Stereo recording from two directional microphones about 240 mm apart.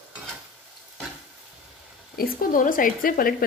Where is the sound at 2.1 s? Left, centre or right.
Left.